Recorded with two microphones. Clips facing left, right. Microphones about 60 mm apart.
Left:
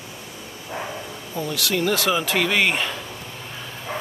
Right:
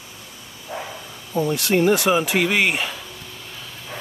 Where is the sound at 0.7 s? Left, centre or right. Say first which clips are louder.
Even; left.